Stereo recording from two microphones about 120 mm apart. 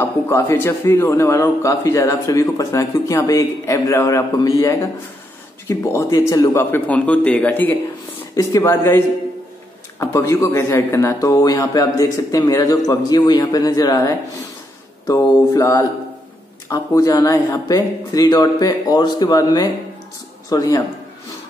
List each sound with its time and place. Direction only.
0.0 s a man's voice: 20° left (ahead or behind)
8.4 s a man's voice: 25° left (ahead or behind)
15.0 s a man's voice: 25° left (ahead or behind)